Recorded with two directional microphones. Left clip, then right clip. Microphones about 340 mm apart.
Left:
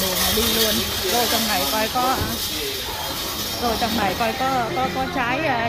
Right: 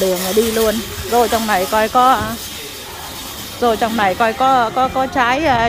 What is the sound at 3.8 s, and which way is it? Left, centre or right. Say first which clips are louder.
Speech: right 6 dB; centre.